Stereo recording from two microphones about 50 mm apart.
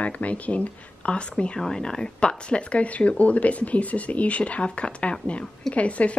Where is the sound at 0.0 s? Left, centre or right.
Left.